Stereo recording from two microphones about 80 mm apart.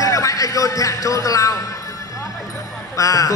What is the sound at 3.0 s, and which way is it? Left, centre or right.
Music, left.